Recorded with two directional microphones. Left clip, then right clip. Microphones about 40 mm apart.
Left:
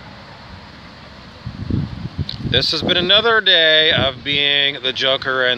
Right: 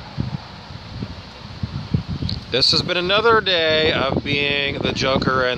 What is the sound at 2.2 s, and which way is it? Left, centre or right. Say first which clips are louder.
Speech: even; right.